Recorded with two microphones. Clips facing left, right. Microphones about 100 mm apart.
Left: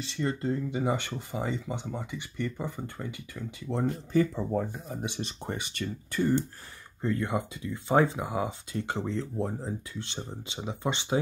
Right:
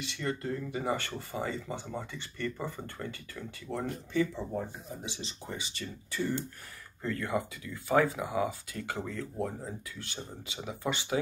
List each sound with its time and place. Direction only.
0.0 s speech: 30° left (ahead or behind)
4.1 s speech: 45° left (ahead or behind)
4.8 s speech: 55° left (ahead or behind)
7.0 s speech: 20° left (ahead or behind)